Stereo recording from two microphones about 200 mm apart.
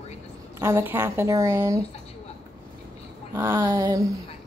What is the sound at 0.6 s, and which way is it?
Speech, 10° right (ahead or behind).